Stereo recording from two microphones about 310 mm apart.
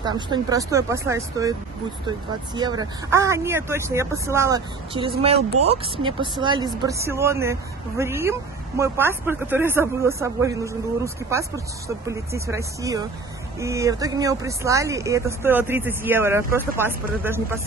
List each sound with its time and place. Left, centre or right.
0.0 s speech: centre